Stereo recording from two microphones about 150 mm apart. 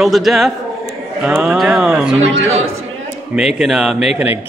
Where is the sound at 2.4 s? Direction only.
45° right (ahead or behind).